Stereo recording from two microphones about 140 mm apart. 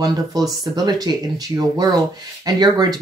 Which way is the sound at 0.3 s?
25° right (ahead or behind).